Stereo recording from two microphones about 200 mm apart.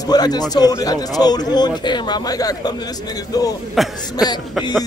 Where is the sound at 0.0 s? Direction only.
20° left (ahead or behind).